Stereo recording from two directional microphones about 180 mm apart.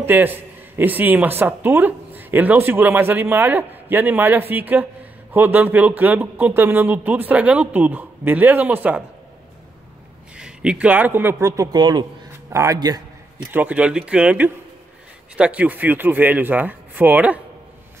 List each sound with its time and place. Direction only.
0.0 s a man's voice: 10° right (ahead or behind)
10.3 s a man's voice: 5° right (ahead or behind); by 13.0 s 20° right (ahead or behind)
13.5 s a man's voice: 10° right (ahead or behind)